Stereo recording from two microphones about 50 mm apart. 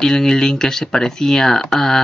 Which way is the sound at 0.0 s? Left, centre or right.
Centre.